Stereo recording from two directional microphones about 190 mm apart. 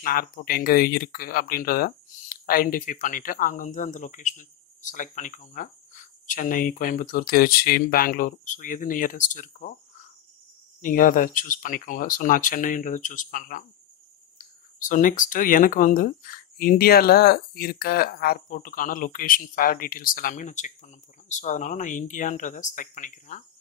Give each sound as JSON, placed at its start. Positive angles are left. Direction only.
{"t": 0.0, "sound": "speech", "side_deg": 50}
{"t": 10.8, "sound": "speech", "side_deg": 45}